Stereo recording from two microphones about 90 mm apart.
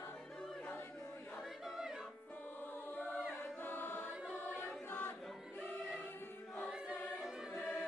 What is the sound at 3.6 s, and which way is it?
Choir, 20° left (ahead or behind).